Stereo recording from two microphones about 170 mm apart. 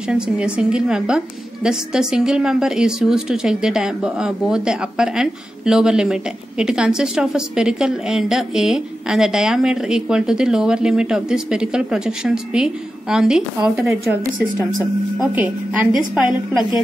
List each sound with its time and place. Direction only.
0.1 s a woman's voice: 5° right (ahead or behind)
15.1 s a woman's voice: 10° right (ahead or behind)